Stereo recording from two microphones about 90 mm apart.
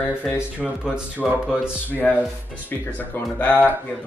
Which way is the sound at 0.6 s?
Centre (ahead or behind).